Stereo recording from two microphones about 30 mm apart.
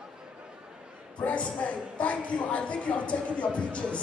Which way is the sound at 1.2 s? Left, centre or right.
Left.